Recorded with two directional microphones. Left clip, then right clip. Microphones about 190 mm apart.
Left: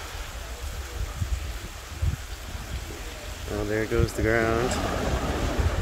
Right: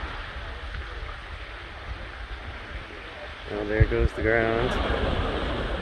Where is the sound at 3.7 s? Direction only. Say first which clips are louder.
Even; 30° left (ahead or behind).